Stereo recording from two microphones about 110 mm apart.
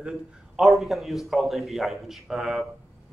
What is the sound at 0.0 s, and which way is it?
A man's voice, 5° right (ahead or behind).